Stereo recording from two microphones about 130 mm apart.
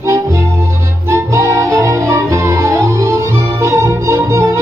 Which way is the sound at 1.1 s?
20° right (ahead or behind).